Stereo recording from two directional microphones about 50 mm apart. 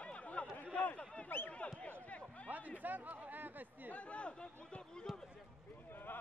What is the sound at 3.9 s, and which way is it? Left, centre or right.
Chatter, left.